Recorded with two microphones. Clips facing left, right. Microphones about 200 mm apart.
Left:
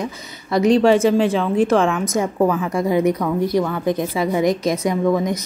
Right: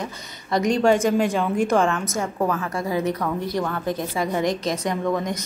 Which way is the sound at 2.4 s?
15° left (ahead or behind).